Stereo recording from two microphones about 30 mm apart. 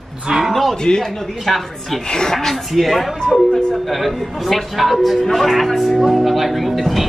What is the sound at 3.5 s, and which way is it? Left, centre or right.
Speech, left.